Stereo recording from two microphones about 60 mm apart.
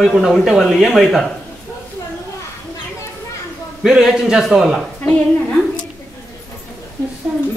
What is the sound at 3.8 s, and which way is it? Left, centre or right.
A man's voice, centre.